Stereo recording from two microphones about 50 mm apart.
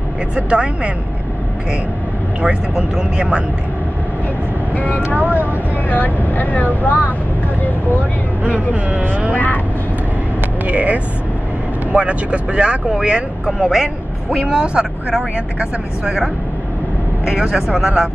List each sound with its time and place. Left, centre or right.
0.5 s speech: right
2.4 s speech: centre
4.7 s speech: left
5.1 s speech: right
5.9 s speech: left
10.7 s speech: right
13.5 s speech: centre
14.5 s speech: centre
17.3 s speech: centre